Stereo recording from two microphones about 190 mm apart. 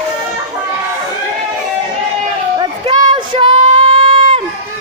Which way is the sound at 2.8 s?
25° right (ahead or behind).